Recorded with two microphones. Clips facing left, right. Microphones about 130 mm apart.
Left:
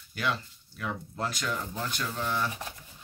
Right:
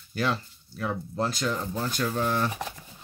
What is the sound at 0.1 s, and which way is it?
Speech, 35° right (ahead or behind).